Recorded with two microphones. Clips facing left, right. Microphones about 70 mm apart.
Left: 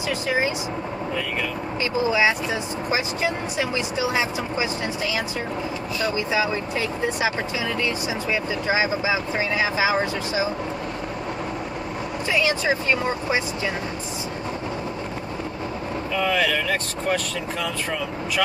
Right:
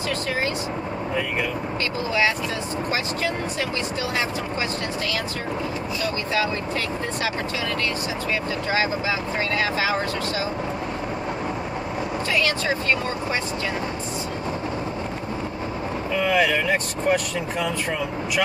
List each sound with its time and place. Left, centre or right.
2.0 s speech: centre
8.6 s speech: centre
12.3 s speech: centre
16.2 s speech: centre